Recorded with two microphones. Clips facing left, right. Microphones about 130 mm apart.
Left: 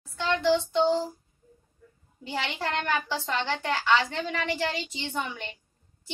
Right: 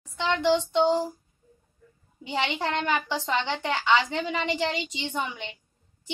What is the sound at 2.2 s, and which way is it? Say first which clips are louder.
A woman's voice: right 3 dB; 15° right (ahead or behind).